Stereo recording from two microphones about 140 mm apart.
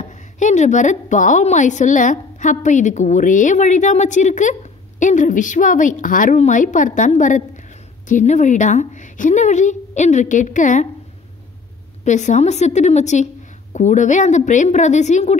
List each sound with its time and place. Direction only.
0.0 s a woman's voice: 55° left (ahead or behind)
12.0 s a woman's voice: 60° left (ahead or behind)